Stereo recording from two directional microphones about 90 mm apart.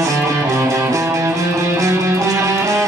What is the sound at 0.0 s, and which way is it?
Music, 35° right (ahead or behind).